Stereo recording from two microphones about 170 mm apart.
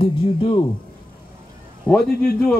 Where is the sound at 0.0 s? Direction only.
30° left (ahead or behind).